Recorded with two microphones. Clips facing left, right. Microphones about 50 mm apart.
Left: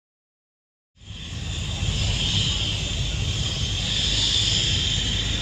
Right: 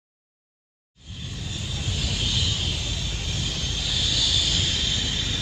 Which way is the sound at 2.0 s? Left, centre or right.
Left.